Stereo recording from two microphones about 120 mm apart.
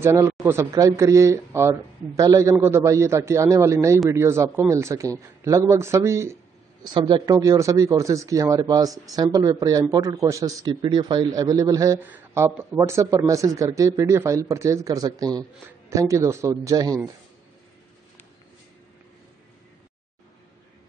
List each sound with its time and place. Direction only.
0.0 s speech: 20° right (ahead or behind)
6.9 s speech: 45° right (ahead or behind)
7.3 s a man's voice: 25° right (ahead or behind)
12.0 s speech: 20° right (ahead or behind)